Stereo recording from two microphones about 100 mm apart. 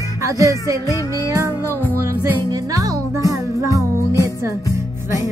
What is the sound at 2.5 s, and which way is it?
Music, 35° right (ahead or behind).